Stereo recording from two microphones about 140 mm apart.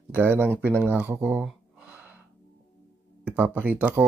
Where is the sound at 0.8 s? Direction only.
10° right (ahead or behind).